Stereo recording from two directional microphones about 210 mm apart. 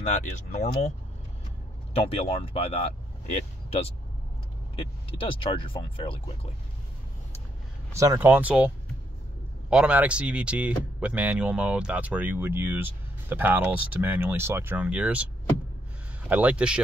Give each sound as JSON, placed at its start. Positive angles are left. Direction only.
{"t": 0.0, "sound": "speech", "side_deg": 35}
{"t": 2.0, "sound": "speech", "side_deg": 25}
{"t": 8.0, "sound": "speech", "side_deg": -10}
{"t": 16.3, "sound": "speech", "side_deg": -5}